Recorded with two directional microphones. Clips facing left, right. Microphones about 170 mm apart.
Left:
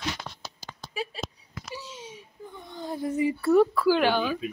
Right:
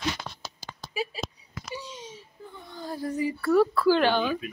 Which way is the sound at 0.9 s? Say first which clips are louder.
Right 2 dB; 5° right (ahead or behind).